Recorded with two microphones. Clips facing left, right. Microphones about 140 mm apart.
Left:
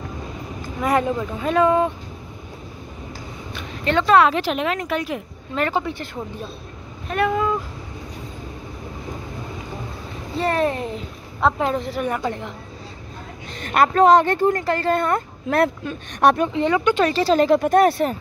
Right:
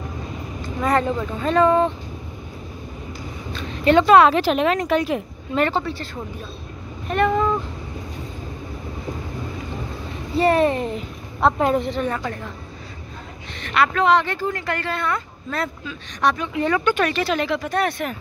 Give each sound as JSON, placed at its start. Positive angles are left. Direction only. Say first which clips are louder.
{"t": 0.7, "sound": "speech", "louder": "even", "side_deg": 10}
{"t": 3.8, "sound": "speech", "louder": "right 3 dB", "side_deg": -15}
{"t": 4.3, "sound": "speech", "louder": "right 4 dB", "side_deg": -40}
{"t": 5.7, "sound": "speech", "louder": "even", "side_deg": 15}
{"t": 7.1, "sound": "speech", "louder": "right 1 dB", "side_deg": 5}
{"t": 10.3, "sound": "speech", "louder": "right 4 dB", "side_deg": 0}
{"t": 11.9, "sound": "speech", "louder": "left 1 dB", "side_deg": 10}
{"t": 13.6, "sound": "speech", "louder": "left 4 dB", "side_deg": 45}
{"t": 14.7, "sound": "speech", "louder": "left 5 dB", "side_deg": 40}
{"t": 16.5, "sound": "speech", "louder": "left 2 dB", "side_deg": 20}